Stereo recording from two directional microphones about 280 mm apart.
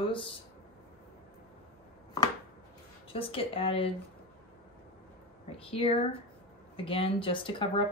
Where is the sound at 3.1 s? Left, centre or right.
Centre.